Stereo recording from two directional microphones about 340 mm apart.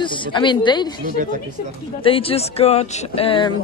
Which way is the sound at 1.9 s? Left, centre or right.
Centre.